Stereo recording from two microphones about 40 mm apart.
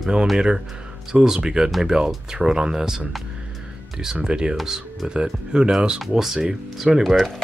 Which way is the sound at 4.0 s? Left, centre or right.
Centre.